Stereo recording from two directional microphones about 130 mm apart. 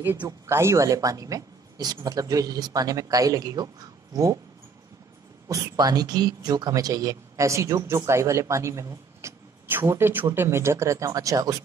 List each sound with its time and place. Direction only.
0.5 s speech: 20° right (ahead or behind)
5.5 s speech: 30° right (ahead or behind)